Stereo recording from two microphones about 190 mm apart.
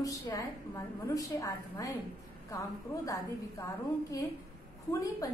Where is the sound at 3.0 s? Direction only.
15° left (ahead or behind).